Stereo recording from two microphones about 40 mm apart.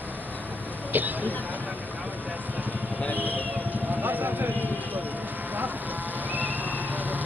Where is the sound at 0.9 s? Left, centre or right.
Right.